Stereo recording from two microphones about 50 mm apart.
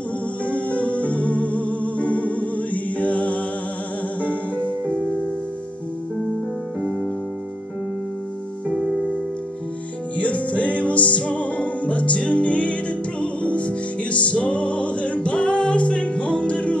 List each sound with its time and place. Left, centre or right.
0.5 s music: left
8.6 s music: centre
10.1 s music: left